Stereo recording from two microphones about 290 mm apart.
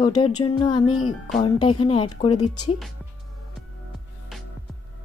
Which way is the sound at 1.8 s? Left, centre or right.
Centre.